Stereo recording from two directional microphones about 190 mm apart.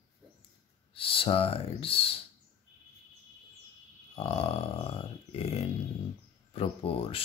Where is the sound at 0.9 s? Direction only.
30° left (ahead or behind).